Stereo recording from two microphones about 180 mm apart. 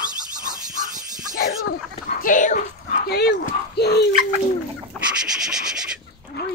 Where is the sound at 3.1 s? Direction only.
60° left (ahead or behind).